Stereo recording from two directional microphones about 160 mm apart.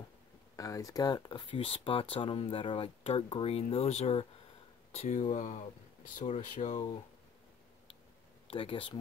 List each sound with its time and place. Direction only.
0.6 s speech: 20° left (ahead or behind); by 6.8 s 45° left (ahead or behind)
8.5 s speech: 35° left (ahead or behind)